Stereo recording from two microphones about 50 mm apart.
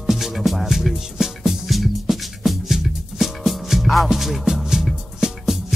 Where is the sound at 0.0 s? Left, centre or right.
Centre.